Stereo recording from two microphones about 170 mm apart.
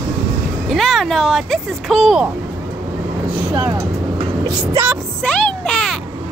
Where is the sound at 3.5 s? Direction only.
20° right (ahead or behind).